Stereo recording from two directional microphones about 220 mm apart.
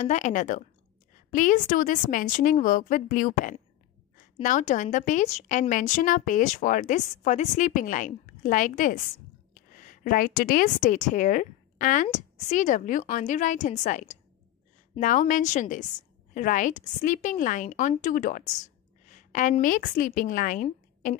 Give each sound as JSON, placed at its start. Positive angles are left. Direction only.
{"t": 0.0, "sound": "a woman's voice", "side_deg": 35}